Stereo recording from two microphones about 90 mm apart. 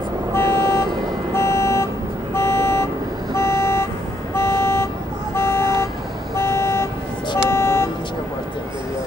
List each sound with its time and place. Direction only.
0.3 s vehicle: 30° left (ahead or behind)